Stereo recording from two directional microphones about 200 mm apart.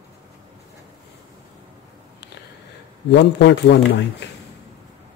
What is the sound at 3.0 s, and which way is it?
Speech, 60° left (ahead or behind).